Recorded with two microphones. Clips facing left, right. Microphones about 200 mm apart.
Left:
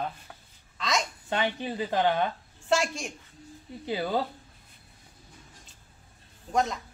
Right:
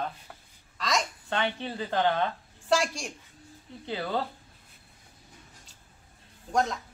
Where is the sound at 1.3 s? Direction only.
15° left (ahead or behind).